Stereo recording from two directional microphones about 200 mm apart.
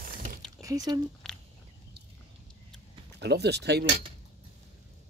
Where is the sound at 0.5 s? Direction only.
15° right (ahead or behind).